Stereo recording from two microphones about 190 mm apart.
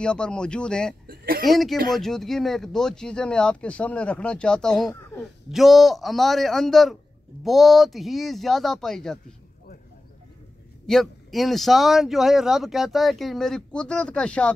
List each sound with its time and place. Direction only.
0.0 s speech: 5° left (ahead or behind)
1.0 s speech: 50° right (ahead or behind)
1.4 s speech: centre (ahead or behind)
10.9 s speech: centre (ahead or behind)